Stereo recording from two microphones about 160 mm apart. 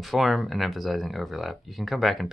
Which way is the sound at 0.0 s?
Centre (ahead or behind).